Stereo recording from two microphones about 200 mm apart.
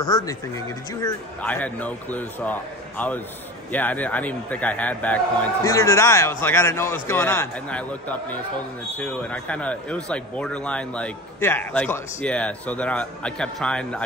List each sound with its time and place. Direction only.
0.0 s speech: 20° left (ahead or behind)
1.4 s a man's voice: 10° left (ahead or behind)